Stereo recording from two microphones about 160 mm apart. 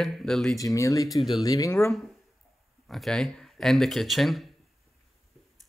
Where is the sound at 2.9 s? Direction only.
Centre (ahead or behind).